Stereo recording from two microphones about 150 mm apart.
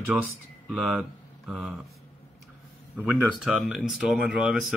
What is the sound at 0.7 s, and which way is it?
Speech, 10° right (ahead or behind).